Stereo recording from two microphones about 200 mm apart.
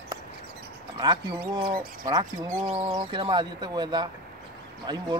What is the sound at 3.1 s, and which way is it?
A man's voice, 25° right (ahead or behind).